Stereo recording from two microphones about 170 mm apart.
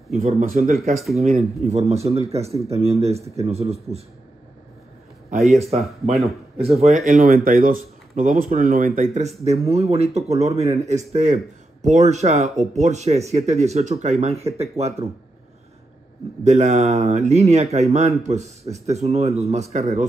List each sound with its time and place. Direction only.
0.2 s speech: 55° right (ahead or behind)
1.1 s speech: 40° right (ahead or behind)
5.4 s speech: centre (ahead or behind)
6.6 s speech: 40° right (ahead or behind)
7.1 s speech: 60° right (ahead or behind); by 15.0 s 40° right (ahead or behind)
16.4 s speech: 45° right (ahead or behind)